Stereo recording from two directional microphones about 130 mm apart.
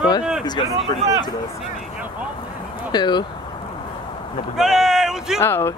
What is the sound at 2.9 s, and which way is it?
Speech, 35° left (ahead or behind).